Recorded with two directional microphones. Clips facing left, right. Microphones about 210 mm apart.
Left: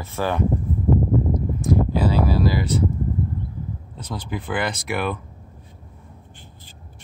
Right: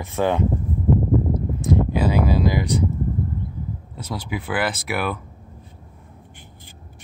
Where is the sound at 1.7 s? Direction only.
15° right (ahead or behind).